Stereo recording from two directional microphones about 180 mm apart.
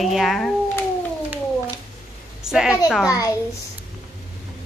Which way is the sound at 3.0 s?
20° left (ahead or behind).